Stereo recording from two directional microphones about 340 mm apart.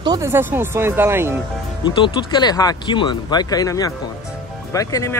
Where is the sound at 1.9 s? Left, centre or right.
Centre.